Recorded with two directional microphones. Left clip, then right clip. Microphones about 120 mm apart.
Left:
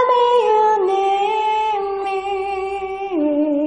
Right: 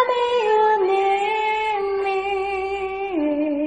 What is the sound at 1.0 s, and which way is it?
Music, 50° left (ahead or behind).